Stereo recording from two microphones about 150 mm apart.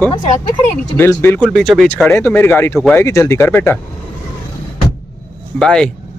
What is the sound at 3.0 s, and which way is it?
Speech, 20° left (ahead or behind).